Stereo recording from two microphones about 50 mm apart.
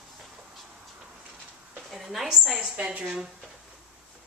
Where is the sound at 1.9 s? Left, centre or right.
Centre.